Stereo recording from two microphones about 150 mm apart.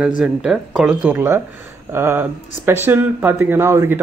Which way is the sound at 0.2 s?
5° right (ahead or behind).